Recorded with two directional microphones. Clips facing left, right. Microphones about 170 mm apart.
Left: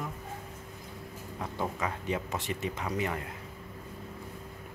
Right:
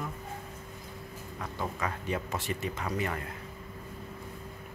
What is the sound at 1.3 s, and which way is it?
Speech, 15° left (ahead or behind).